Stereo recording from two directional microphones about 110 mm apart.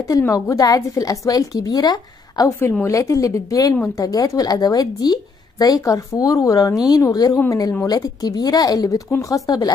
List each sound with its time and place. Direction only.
0.3 s speech: 30° left (ahead or behind)